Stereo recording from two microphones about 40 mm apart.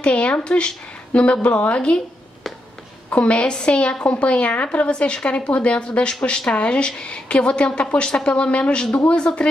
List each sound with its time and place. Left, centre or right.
0.0 s speech: left
3.1 s a woman's voice: left